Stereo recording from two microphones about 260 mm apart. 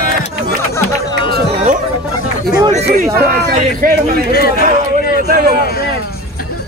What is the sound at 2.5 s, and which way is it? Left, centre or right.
A man's voice, right.